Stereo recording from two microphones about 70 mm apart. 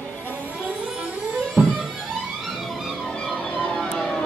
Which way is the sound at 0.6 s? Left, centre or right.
Centre.